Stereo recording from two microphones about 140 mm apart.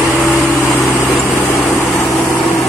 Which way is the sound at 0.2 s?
Centre (ahead or behind).